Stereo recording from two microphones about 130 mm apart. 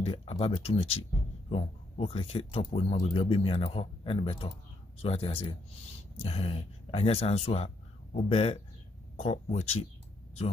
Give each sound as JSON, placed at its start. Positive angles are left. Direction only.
{"t": 0.0, "sound": "speech", "side_deg": 50}